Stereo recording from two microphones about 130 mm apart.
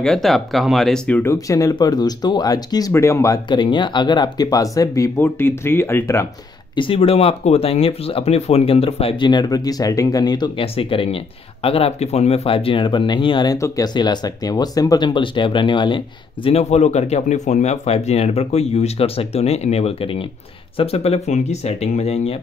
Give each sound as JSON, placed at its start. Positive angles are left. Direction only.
{"t": 0.0, "sound": "speech", "side_deg": 5}
{"t": 1.3, "sound": "speech", "side_deg": 25}
{"t": 3.4, "sound": "speech", "side_deg": 35}
{"t": 6.7, "sound": "speech", "side_deg": 40}
{"t": 10.6, "sound": "speech", "side_deg": 45}
{"t": 16.4, "sound": "speech", "side_deg": 55}